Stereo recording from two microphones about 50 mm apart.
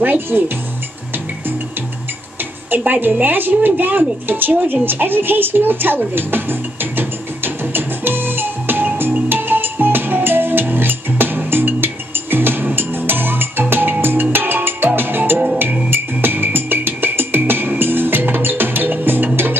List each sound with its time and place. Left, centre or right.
0.0 s a woman's voice: right
2.8 s a woman's voice: right
9.3 s music: right